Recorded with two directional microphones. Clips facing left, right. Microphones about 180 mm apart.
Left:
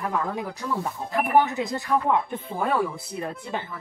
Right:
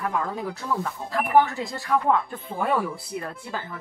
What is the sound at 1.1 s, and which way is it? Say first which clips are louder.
Speech: right 1 dB; 20° left (ahead or behind).